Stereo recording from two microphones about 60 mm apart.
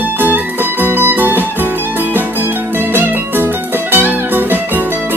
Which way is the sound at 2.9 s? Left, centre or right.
Right.